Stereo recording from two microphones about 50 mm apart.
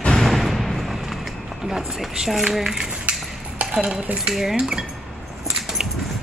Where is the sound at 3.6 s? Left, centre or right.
Right.